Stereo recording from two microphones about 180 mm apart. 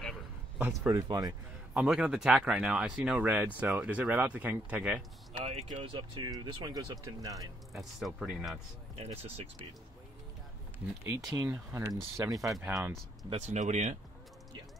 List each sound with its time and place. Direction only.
0.6 s speech: 10° right (ahead or behind)
0.9 s speech: 20° right (ahead or behind)
1.7 s speech: 5° right (ahead or behind)
5.4 s speech: 35° right (ahead or behind)
7.7 s speech: centre (ahead or behind)
8.9 s speech: 35° right (ahead or behind)
11.2 s speech: 20° right (ahead or behind)
12.5 s speech: 5° right (ahead or behind)
13.3 s speech: 40° right (ahead or behind)